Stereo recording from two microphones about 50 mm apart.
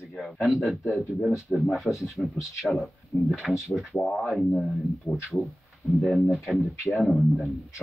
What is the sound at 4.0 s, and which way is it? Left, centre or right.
Speech, centre.